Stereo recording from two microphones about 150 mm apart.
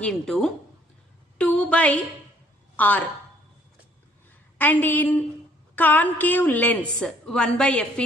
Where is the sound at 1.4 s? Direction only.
10° left (ahead or behind).